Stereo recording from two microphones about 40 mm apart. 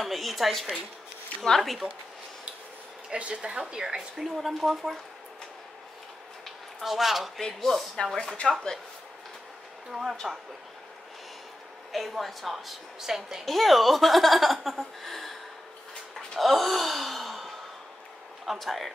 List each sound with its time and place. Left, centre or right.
0.0 s speech: centre
3.1 s a woman's voice: right
4.2 s speech: centre
6.8 s speech: centre
7.3 s speech: centre
9.8 s speech: centre
11.9 s speech: centre
12.5 s speech: centre
13.5 s speech: centre
16.3 s sigh: centre
18.4 s speech: centre